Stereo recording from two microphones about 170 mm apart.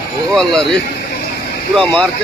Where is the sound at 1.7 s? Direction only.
5° left (ahead or behind).